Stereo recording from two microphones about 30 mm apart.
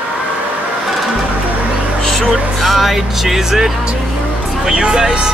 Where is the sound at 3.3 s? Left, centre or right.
Centre.